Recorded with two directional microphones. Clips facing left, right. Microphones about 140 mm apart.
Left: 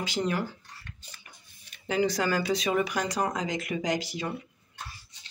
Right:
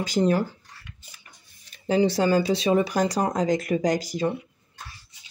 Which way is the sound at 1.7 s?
30° right (ahead or behind).